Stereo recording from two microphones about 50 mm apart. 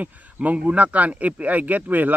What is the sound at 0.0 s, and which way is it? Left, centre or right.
Speech, right.